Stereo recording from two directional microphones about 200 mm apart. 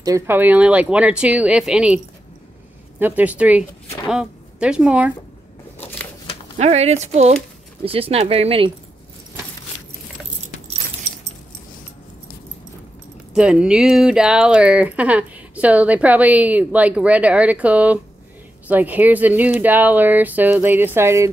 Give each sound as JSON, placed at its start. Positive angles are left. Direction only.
{"t": 0.0, "sound": "speech", "side_deg": -15}
{"t": 3.0, "sound": "speech", "side_deg": -10}
{"t": 6.6, "sound": "speech", "side_deg": -30}
{"t": 13.3, "sound": "speech", "side_deg": -5}